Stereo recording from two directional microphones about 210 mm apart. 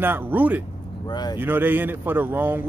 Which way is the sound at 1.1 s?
20° left (ahead or behind).